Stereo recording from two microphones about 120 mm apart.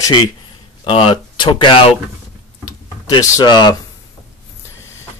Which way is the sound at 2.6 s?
30° left (ahead or behind).